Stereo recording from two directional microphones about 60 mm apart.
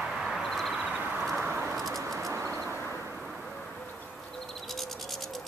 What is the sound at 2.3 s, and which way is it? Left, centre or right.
Vehicle, right.